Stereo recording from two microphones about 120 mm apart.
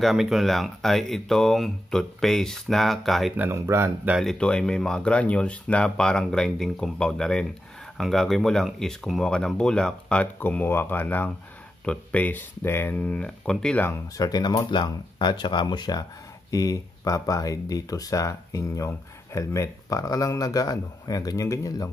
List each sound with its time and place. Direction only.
0.0 s speech: centre (ahead or behind)
3.3 s speech: 20° right (ahead or behind)
4.2 s speech: 5° left (ahead or behind)
13.8 s speech: 20° left (ahead or behind)
14.2 s speech: 30° left (ahead or behind)